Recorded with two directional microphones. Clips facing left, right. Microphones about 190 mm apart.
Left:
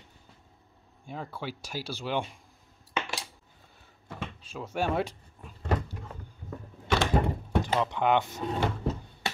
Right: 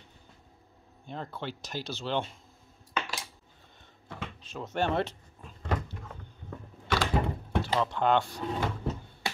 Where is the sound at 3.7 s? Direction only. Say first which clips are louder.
Left 2 dB; 5° left (ahead or behind).